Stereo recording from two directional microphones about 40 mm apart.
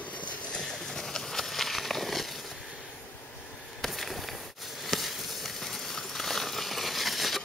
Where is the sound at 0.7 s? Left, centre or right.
Centre.